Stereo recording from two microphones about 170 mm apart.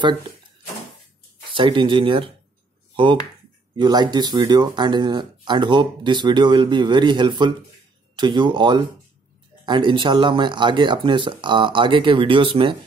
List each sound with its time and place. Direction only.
1.5 s speech: 30° right (ahead or behind)
3.7 s speech: 25° right (ahead or behind)